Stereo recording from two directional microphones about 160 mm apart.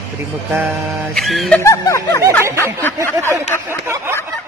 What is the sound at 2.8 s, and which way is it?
Speech, 15° left (ahead or behind).